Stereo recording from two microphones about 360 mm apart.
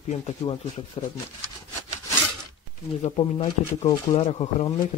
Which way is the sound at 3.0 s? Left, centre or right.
Centre.